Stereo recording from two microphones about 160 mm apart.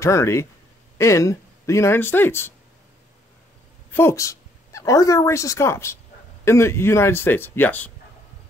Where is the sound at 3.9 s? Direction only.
15° left (ahead or behind).